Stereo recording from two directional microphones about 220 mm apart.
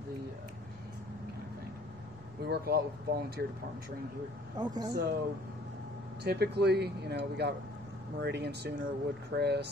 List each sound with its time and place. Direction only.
2.4 s speech: 45° right (ahead or behind)
4.6 s speech: 20° right (ahead or behind)
6.2 s speech: 50° right (ahead or behind)